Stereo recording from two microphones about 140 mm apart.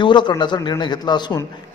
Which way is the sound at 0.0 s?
35° left (ahead or behind).